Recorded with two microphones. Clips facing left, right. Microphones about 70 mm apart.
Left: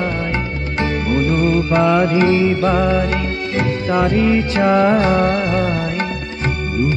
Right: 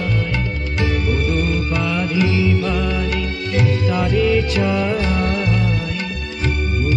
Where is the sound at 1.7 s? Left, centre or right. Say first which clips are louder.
Left 7 dB; left.